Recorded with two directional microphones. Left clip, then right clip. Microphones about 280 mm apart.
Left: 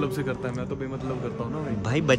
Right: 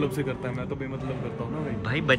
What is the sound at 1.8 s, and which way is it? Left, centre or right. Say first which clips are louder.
Speech: left 1 dB; centre.